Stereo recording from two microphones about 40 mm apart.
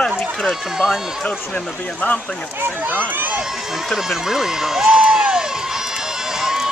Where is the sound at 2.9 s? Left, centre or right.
Right.